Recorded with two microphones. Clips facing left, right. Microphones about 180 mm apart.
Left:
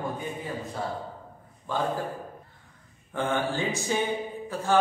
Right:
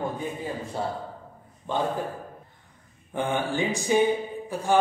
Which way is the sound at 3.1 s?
15° right (ahead or behind).